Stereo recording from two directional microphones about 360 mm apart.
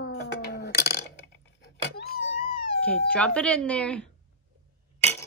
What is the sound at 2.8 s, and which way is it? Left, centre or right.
Speech, centre.